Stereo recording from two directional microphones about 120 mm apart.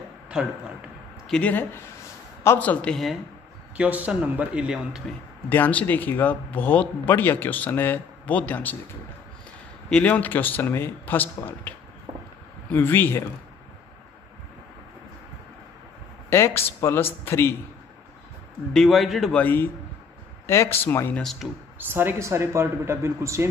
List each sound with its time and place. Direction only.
0.3 s speech: 5° right (ahead or behind)
1.3 s speech: 15° left (ahead or behind)
3.7 s speech: 10° right (ahead or behind)
5.5 s speech: 15° left (ahead or behind)
9.8 s speech: 10° left (ahead or behind)
12.7 s speech: 15° left (ahead or behind)
16.3 s speech: 20° left (ahead or behind)
18.7 s a man's voice: centre (ahead or behind)
19.3 s speech: 15° left (ahead or behind)
21.2 s a man's voice: centre (ahead or behind)
21.7 s speech: 15° right (ahead or behind)